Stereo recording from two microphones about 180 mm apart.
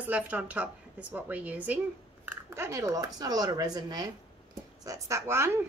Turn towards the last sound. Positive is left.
turn(degrees=-15)  # may be behind; listen again after turning